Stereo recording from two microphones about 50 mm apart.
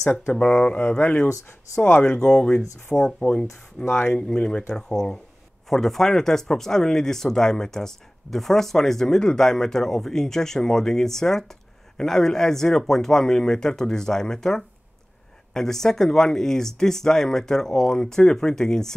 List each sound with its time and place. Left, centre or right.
0.3 s speech: centre
2.0 s speech: centre
3.8 s speech: left
4.2 s speech: centre